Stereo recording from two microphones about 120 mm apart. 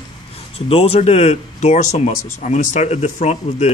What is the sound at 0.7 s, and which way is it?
A man's voice, 55° left (ahead or behind).